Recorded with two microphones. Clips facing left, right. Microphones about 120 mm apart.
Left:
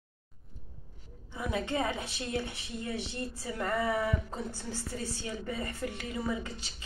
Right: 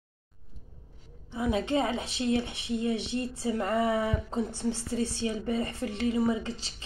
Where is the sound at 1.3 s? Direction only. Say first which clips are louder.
Right 6 dB; 25° right (ahead or behind).